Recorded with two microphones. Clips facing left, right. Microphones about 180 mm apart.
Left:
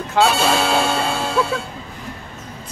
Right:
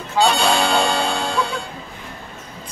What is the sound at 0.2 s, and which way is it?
Music, 5° left (ahead or behind).